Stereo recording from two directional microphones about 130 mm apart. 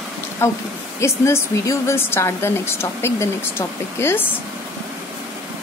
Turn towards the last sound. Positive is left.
turn(degrees=15)  # may be behind; listen again after turning